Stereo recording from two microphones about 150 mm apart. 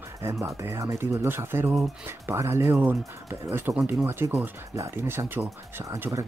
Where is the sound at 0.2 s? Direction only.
20° right (ahead or behind).